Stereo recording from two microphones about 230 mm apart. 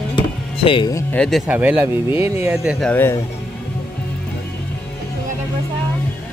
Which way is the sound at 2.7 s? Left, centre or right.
Centre.